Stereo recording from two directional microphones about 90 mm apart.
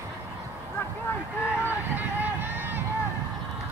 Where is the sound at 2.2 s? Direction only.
20° right (ahead or behind).